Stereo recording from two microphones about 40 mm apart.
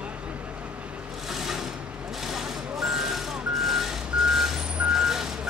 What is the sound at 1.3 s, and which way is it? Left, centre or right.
Sewing machine, centre.